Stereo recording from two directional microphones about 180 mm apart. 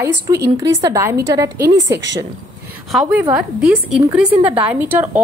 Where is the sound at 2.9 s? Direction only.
5° right (ahead or behind).